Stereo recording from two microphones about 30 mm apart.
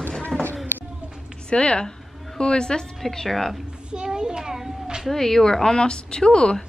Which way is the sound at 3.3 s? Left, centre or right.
Centre.